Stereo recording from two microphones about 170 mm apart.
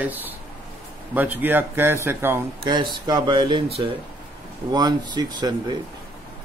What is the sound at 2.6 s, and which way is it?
Speech, 25° right (ahead or behind).